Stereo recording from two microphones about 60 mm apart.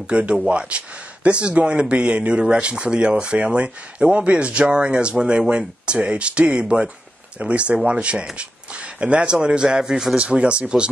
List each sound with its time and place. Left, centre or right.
0.1 s speech: centre
10.1 s speech: centre